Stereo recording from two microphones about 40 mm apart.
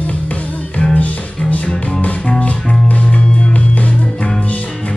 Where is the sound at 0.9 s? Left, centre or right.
Left.